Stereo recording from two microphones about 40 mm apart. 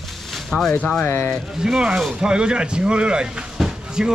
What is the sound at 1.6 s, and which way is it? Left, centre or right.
Speech, centre.